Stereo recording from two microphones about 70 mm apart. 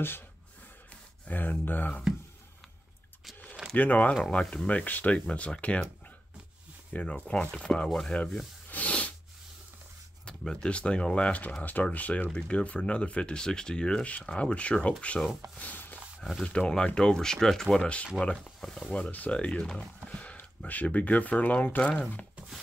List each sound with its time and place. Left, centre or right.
1.2 s speech: left
3.7 s speech: left
4.6 s speech: left
6.9 s speech: centre
8.6 s a sound: left
10.2 s speech: centre
15.5 s a sound: left
16.2 s speech: centre